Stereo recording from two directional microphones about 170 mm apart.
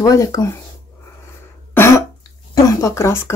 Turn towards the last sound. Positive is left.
turn(degrees=15)  # may be behind; listen again after turning